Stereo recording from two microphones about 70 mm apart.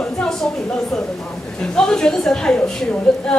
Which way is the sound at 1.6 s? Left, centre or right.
Centre.